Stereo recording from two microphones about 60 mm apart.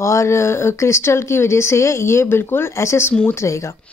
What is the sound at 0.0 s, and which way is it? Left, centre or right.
Speech, left.